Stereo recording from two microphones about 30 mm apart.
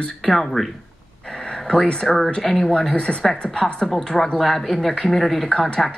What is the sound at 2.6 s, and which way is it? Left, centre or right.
Speech, left.